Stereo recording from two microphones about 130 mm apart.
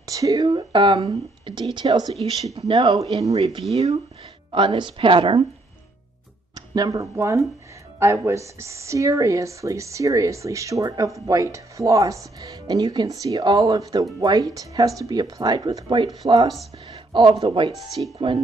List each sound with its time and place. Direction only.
0.0 s a woman's voice: 25° right (ahead or behind)
3.0 s speech: 25° right (ahead or behind)
3.7 s speech: 50° right (ahead or behind)
4.5 s a woman's voice: 40° right (ahead or behind)
6.5 s speech: 30° right (ahead or behind)